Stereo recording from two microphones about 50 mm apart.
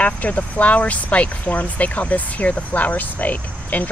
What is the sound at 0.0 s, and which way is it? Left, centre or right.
Speech, left.